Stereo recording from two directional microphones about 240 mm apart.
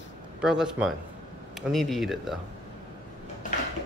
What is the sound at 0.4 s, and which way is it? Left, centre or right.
Speech, centre.